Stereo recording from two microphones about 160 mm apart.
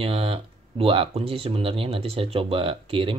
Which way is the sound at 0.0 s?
35° right (ahead or behind).